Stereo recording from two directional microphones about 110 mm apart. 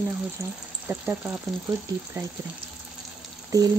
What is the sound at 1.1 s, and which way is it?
Speech, 15° right (ahead or behind).